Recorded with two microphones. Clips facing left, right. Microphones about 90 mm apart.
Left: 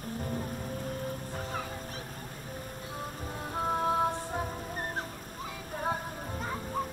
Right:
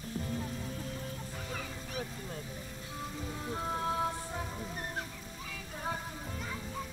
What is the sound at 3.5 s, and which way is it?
Music, 35° left (ahead or behind).